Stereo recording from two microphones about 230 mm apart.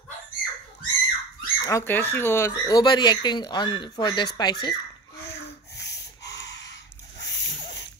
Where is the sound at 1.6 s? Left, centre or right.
Centre.